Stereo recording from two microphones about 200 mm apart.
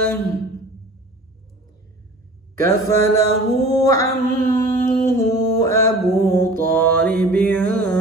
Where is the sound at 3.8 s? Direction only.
15° left (ahead or behind).